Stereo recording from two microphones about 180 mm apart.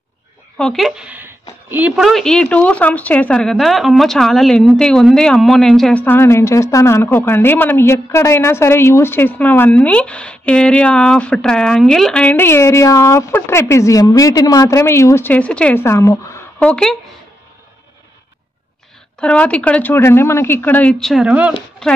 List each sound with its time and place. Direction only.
0.6 s speech: centre (ahead or behind)
19.1 s speech: 5° left (ahead or behind)